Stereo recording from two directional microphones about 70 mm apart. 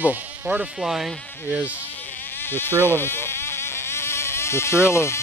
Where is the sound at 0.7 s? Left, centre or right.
Centre.